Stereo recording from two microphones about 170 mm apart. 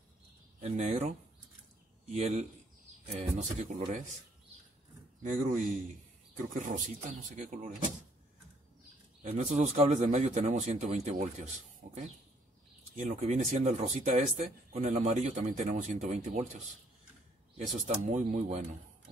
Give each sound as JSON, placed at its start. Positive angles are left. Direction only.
{"t": 0.6, "sound": "speech", "side_deg": -40}
{"t": 5.3, "sound": "speech", "side_deg": -50}
{"t": 9.3, "sound": "speech", "side_deg": -40}
{"t": 17.7, "sound": "speech", "side_deg": -45}